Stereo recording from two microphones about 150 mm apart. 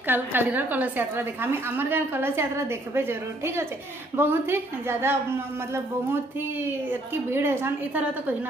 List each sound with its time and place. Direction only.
0.0 s a woman's voice: 15° right (ahead or behind)
6.9 s a woman's voice: 15° right (ahead or behind)